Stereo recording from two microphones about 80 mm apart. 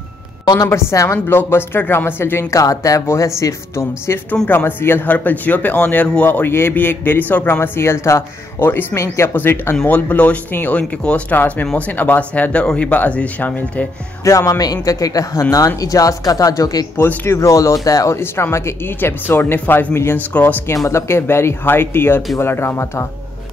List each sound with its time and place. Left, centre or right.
0.7 s a woman's voice: left
2.5 s a woman's voice: left
9.3 s speech: left
14.2 s speech: left
16.9 s speech: left
17.4 s a woman's voice: left